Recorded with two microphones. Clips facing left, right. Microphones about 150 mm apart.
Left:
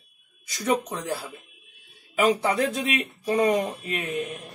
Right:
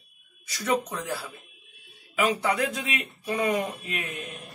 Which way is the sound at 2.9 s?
35° left (ahead or behind).